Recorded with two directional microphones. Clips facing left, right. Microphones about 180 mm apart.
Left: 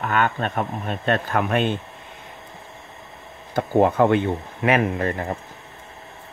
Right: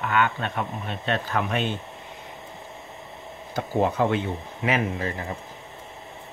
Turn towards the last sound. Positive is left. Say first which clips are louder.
# left 5 dB
turn(degrees=60)  # may be behind; listen again after turning